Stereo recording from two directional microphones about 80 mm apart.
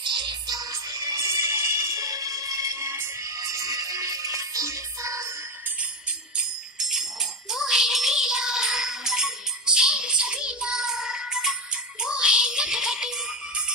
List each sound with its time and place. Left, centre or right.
0.0 s music: right
0.6 s music: right
3.3 s music: right
6.3 s jingle bell: centre